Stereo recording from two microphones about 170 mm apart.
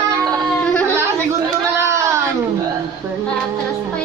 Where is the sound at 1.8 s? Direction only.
15° right (ahead or behind).